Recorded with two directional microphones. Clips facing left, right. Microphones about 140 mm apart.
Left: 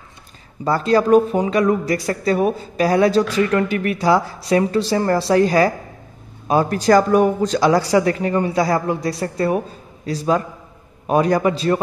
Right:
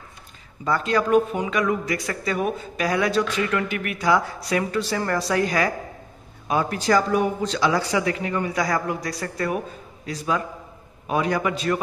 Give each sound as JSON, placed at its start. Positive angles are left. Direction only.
{"t": 0.7, "sound": "speech", "side_deg": 35}